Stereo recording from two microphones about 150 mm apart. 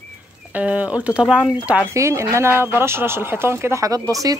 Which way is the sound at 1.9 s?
20° right (ahead or behind).